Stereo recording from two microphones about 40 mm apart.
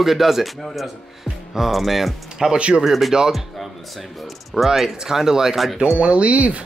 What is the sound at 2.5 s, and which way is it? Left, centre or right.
Speech, right.